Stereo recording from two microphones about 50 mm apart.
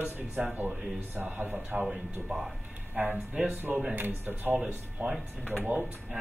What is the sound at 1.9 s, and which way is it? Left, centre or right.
Speech, centre.